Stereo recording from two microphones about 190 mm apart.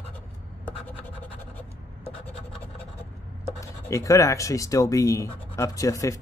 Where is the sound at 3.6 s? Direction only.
15° left (ahead or behind).